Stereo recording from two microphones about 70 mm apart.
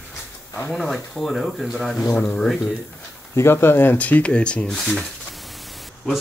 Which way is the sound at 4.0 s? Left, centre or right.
Centre.